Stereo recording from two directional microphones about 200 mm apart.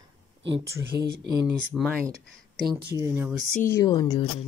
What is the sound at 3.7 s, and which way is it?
Speech, 20° left (ahead or behind).